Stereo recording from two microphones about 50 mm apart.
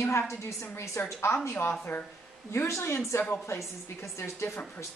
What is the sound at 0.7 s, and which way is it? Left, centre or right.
Speech, left.